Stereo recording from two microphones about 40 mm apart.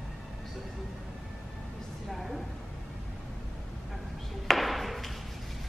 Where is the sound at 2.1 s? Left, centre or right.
Centre.